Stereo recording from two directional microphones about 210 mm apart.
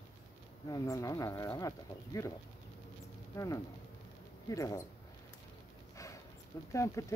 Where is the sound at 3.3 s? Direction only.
15° left (ahead or behind).